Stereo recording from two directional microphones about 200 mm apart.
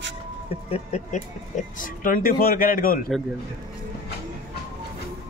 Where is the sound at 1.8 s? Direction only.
45° left (ahead or behind).